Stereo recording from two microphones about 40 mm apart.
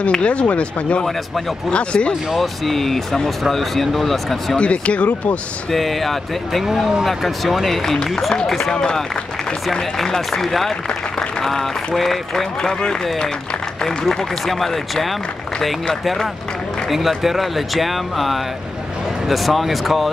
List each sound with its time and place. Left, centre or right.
0.1 s speech: left
2.3 s speech: centre
4.6 s speech: left
5.7 s speech: centre
6.6 s speech: centre
8.7 s speech: centre
9.9 s speech: centre
13.8 s speech: centre
17.2 s speech: centre